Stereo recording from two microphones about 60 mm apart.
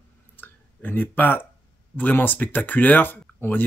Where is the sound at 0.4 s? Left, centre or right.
Left.